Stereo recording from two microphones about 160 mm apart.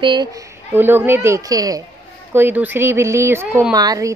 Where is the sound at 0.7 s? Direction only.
15° right (ahead or behind).